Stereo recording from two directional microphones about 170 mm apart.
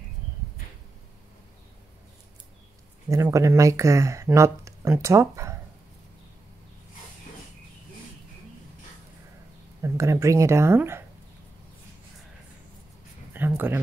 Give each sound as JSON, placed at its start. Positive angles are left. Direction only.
{"t": 3.1, "sound": "speech", "side_deg": -20}
{"t": 9.8, "sound": "speech", "side_deg": -15}
{"t": 13.3, "sound": "a sound", "side_deg": -10}